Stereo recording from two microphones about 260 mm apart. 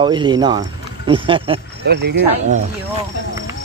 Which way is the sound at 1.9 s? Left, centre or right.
Right.